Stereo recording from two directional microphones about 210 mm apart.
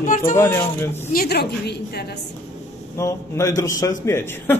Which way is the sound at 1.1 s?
50° left (ahead or behind).